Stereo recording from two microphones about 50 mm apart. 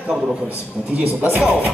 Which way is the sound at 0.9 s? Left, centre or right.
Right.